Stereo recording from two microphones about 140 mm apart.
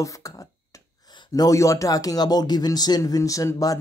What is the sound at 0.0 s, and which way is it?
Speech, 25° left (ahead or behind).